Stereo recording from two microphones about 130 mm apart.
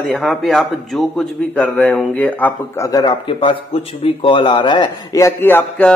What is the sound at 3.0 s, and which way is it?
Speech, 40° left (ahead or behind).